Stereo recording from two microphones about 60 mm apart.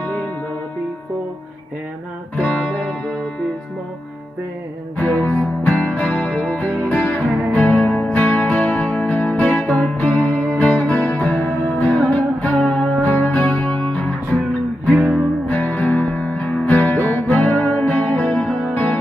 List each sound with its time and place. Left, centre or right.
0.0 s music: left
2.3 s music: centre
4.9 s music: left
9.9 s music: left; by 12.9 s centre
13.1 s music: left
14.9 s music: centre
15.4 s music: left